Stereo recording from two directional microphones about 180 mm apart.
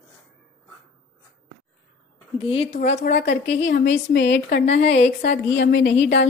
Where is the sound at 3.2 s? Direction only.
75° left (ahead or behind).